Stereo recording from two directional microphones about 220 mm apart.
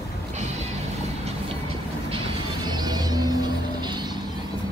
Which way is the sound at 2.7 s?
20° right (ahead or behind).